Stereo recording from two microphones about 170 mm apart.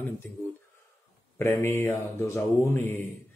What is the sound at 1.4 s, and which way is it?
Speech, 15° left (ahead or behind).